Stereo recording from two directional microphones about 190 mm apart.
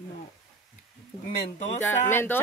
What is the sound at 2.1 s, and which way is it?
Speech, 10° left (ahead or behind).